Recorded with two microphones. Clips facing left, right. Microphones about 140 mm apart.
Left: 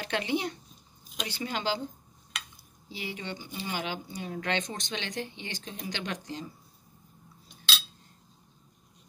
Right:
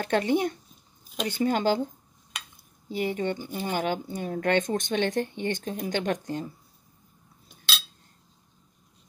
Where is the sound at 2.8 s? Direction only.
50° right (ahead or behind).